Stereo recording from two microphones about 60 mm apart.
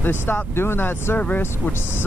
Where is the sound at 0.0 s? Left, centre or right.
Left.